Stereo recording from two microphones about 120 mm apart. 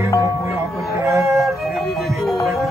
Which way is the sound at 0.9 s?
25° right (ahead or behind).